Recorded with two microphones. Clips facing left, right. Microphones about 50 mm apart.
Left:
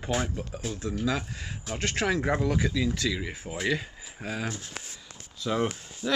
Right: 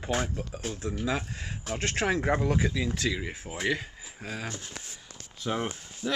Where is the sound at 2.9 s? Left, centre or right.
Right.